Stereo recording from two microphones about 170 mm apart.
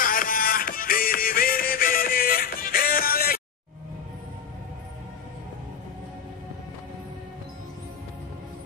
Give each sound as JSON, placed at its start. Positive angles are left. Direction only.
{"t": 0.0, "sound": "music", "side_deg": 55}